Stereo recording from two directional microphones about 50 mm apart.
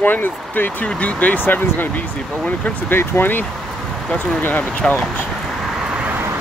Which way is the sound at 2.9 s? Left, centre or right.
Left.